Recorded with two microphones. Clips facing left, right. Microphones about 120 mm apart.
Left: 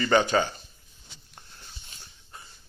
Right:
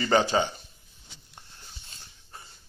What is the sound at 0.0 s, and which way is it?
Speech, 30° right (ahead or behind).